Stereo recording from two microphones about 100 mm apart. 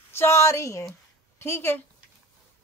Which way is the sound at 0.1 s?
25° left (ahead or behind).